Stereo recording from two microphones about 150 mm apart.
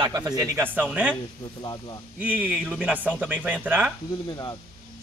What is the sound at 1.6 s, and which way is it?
Speech, 30° left (ahead or behind).